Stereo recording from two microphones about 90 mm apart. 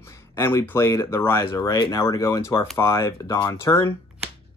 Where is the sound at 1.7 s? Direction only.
55° left (ahead or behind).